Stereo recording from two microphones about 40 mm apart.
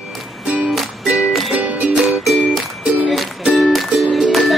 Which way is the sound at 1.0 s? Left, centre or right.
Right.